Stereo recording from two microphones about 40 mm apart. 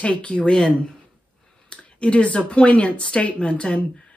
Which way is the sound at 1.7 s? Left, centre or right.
Left.